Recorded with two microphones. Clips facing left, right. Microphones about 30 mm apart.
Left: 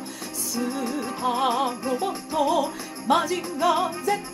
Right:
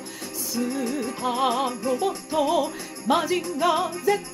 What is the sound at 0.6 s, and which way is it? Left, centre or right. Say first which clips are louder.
Music: right 1 dB; centre.